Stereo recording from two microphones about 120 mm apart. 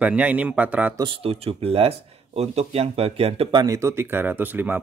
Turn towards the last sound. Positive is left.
turn(degrees=-15)  # may be behind; listen again after turning